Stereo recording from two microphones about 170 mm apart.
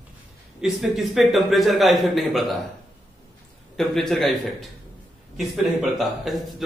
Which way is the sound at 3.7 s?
Centre (ahead or behind).